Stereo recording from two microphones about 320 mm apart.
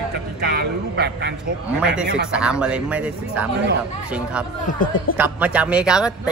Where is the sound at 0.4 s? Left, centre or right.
Right.